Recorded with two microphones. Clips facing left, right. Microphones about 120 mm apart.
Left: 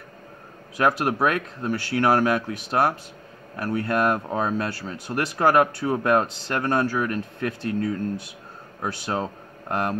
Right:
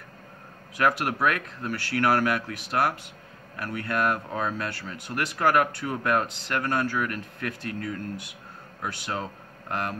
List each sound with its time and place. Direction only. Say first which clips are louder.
0.7 s speech: left 3 dB; 25° left (ahead or behind)